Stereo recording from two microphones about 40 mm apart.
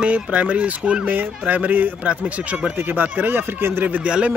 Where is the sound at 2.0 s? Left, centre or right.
Right.